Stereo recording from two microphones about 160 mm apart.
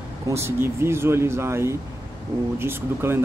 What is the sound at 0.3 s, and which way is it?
Speech, 15° right (ahead or behind).